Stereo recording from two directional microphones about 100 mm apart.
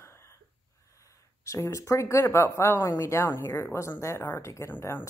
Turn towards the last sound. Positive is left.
turn(degrees=25)  # may be behind; listen again after turning